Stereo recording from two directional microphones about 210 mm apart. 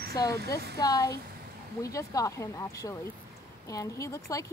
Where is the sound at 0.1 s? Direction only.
15° left (ahead or behind).